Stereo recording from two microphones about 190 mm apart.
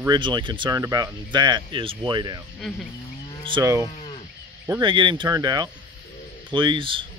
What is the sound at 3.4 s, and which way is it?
Speech, 20° right (ahead or behind).